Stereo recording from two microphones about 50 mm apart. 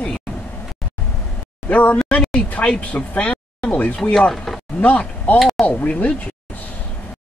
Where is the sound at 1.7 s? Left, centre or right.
Left.